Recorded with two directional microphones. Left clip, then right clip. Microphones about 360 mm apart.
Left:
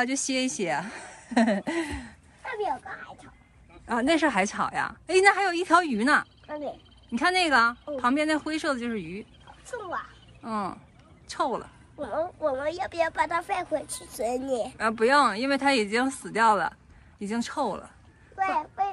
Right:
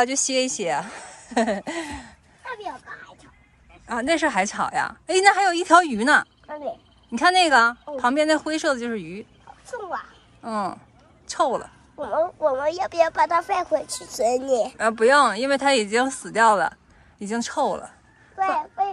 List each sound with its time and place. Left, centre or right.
0.0 s a woman's voice: centre
3.8 s a woman's voice: centre
14.8 s a woman's voice: centre